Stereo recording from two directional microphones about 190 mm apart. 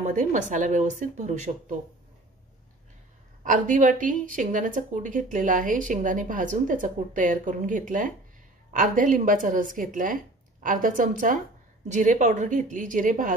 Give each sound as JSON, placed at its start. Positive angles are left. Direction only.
{"t": 0.0, "sound": "speech", "side_deg": -40}
{"t": 3.4, "sound": "speech", "side_deg": -45}